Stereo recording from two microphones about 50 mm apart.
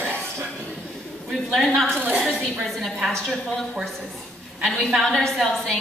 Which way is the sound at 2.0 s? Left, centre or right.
Right.